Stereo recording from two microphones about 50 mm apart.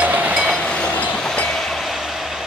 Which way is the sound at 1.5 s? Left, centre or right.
Centre.